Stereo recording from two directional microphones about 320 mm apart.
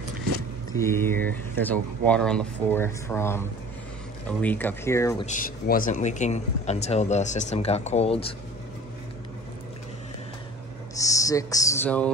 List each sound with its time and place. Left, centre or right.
0.7 s speech: centre
5.2 s speech: left
11.0 s speech: centre